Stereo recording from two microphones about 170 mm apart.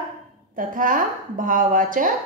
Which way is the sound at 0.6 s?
55° right (ahead or behind).